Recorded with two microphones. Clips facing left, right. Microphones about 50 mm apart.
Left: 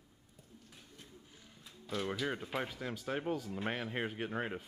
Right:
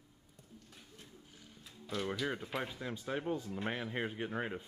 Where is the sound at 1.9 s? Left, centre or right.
Centre.